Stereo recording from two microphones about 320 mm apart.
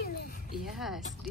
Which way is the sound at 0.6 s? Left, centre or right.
Centre.